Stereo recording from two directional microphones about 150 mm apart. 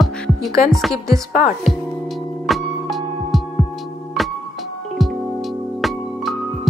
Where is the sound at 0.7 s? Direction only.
Centre (ahead or behind).